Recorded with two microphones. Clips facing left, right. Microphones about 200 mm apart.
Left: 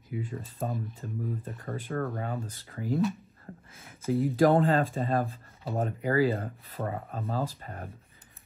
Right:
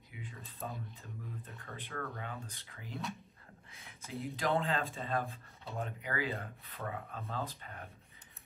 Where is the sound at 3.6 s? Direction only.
50° left (ahead or behind).